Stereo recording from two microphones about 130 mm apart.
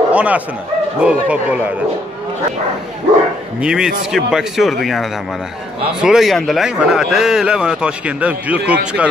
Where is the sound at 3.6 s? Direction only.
5° right (ahead or behind).